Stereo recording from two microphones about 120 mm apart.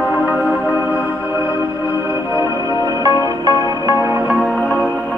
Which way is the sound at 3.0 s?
30° right (ahead or behind).